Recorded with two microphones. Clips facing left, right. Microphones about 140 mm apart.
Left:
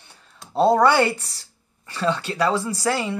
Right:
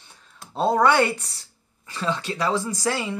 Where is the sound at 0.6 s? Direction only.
35° left (ahead or behind).